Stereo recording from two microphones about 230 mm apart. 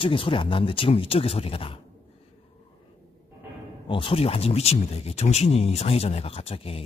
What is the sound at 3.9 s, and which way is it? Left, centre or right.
Speech, left.